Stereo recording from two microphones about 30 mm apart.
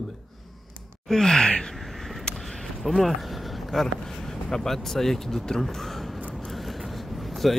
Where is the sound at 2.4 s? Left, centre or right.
Centre.